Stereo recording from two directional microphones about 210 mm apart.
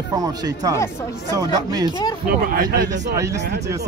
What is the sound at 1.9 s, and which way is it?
Speech, 20° left (ahead or behind).